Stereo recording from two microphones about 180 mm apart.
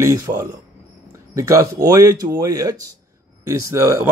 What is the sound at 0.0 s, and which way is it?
Speech, 15° right (ahead or behind).